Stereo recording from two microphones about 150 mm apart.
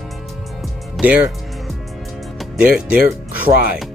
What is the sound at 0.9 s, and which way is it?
Speech, 10° right (ahead or behind).